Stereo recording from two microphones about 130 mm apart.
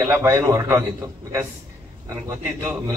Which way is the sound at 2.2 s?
20° right (ahead or behind).